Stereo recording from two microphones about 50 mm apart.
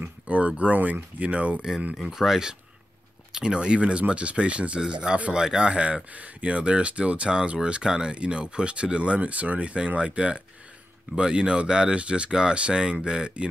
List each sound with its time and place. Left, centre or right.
0.3 s speech: right
2.0 s speech: centre